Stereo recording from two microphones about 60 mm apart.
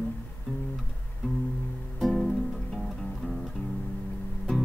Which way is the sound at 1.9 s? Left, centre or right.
Centre.